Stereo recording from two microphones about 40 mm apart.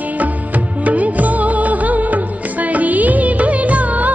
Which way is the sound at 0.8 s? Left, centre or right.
Right.